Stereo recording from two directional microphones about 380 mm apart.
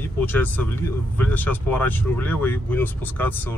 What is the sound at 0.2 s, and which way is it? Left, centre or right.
Speech, centre.